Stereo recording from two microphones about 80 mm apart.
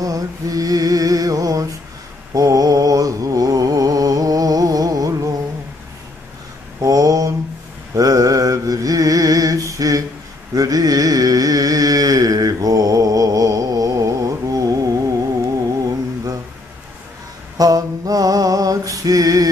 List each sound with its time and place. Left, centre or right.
0.0 s mantra: right
6.8 s mantra: right
10.5 s carnatic music: right
17.6 s a sound: right